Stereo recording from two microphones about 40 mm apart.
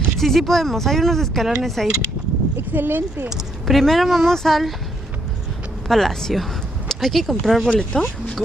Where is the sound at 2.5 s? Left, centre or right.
Right.